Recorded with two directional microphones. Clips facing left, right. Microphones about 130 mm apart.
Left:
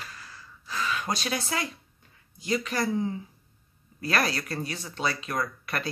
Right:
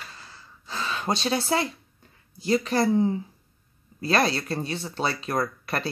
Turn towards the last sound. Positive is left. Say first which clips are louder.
# right 4 dB
turn(degrees=-35)  # may be behind; listen again after turning